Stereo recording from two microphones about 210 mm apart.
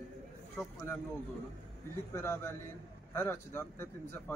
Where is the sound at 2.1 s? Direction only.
10° left (ahead or behind).